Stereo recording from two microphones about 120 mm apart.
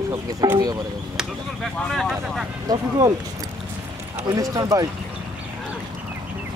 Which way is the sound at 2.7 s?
30° right (ahead or behind).